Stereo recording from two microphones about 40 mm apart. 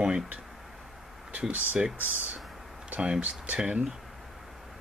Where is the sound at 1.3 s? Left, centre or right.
Right.